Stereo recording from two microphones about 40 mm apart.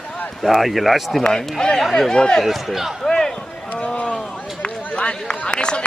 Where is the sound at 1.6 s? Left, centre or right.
Centre.